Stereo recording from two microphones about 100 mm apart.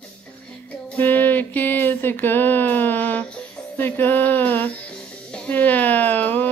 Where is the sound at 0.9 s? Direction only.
20° left (ahead or behind).